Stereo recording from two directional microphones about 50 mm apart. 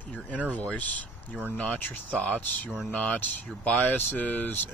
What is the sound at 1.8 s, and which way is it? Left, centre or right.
Speech, left.